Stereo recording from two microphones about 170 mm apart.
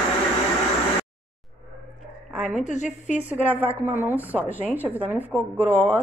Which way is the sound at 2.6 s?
45° left (ahead or behind).